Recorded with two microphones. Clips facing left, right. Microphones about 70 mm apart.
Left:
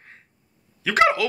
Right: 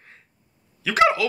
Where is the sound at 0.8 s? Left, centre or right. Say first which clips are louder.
Even; left.